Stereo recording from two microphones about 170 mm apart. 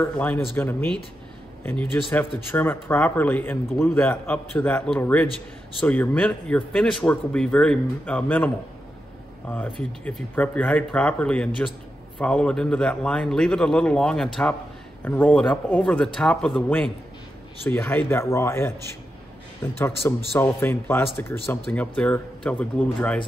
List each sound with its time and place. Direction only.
0.0 s speech: 10° left (ahead or behind)
9.5 s a man's voice: 5° left (ahead or behind)
19.8 s speech: 15° left (ahead or behind)